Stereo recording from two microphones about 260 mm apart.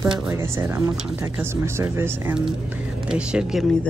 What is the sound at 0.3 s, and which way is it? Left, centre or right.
Speech, centre.